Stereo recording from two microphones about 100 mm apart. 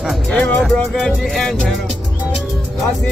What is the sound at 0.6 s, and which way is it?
Music, centre (ahead or behind).